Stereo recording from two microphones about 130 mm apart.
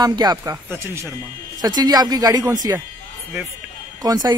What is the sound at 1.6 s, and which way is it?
Speech, 30° right (ahead or behind).